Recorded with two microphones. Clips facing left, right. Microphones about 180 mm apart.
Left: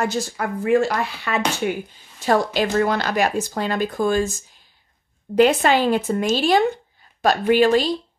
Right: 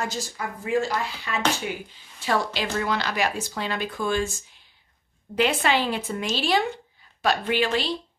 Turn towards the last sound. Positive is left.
turn(degrees=45)  # may be behind; listen again after turning